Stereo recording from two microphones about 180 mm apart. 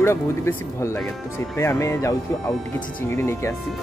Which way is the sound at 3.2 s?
15° left (ahead or behind).